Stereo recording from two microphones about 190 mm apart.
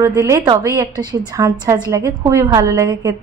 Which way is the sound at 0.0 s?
15° right (ahead or behind).